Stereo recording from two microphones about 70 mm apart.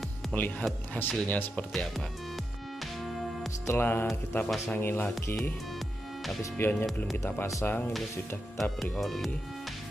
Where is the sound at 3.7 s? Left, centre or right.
Left.